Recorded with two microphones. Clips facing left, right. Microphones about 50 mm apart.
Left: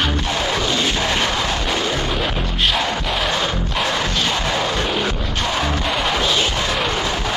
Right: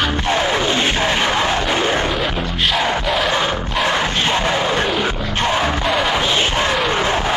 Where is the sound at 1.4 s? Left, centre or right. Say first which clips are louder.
Right 4 dB; right.